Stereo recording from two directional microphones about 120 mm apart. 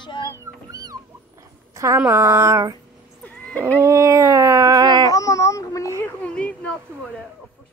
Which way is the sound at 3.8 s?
25° right (ahead or behind).